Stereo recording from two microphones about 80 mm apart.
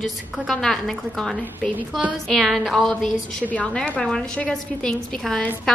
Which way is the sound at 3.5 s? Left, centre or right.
Centre.